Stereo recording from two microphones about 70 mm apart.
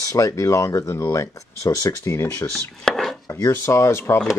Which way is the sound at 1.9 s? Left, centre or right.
Left.